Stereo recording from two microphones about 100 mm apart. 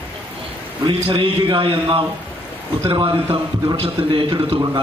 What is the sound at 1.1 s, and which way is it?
Speech, 60° right (ahead or behind).